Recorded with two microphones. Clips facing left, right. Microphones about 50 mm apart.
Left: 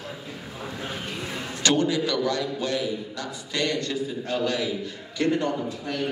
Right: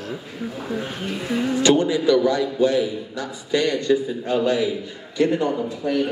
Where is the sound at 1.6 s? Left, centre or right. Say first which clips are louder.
Right 5 dB; right.